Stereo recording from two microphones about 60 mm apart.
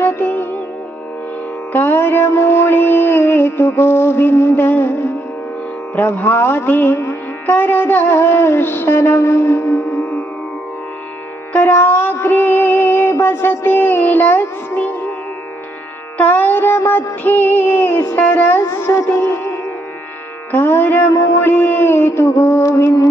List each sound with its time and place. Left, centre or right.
0.0 s music: left
1.7 s music: left
11.5 s music: left
16.2 s music: left
21.1 s a sound: left
21.4 s music: left